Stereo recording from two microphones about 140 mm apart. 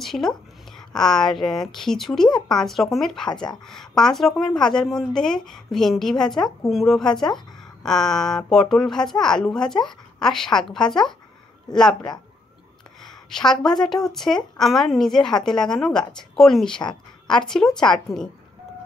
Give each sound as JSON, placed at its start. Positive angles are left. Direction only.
{"t": 0.0, "sound": "a woman's voice", "side_deg": 0}
{"t": 3.3, "sound": "speech", "side_deg": 30}
{"t": 3.6, "sound": "speech", "side_deg": 5}
{"t": 13.3, "sound": "speech", "side_deg": 5}